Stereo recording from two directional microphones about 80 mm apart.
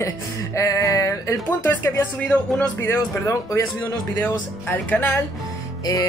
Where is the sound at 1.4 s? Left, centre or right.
Left.